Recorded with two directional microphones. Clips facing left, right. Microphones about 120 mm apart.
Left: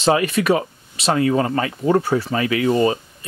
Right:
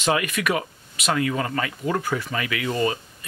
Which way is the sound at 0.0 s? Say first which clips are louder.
Left 6 dB; 30° left (ahead or behind).